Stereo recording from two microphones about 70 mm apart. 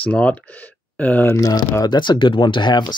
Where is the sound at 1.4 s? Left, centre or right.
Left.